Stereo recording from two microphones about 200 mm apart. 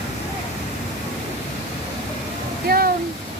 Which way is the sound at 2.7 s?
50° right (ahead or behind).